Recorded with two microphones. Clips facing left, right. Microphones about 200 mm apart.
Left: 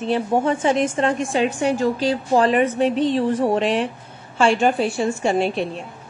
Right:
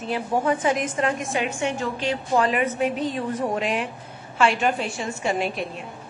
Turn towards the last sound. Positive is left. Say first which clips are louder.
# left 5 dB
turn(degrees=30)  # may be behind; listen again after turning